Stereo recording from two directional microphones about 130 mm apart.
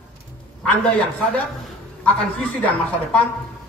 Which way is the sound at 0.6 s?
10° left (ahead or behind).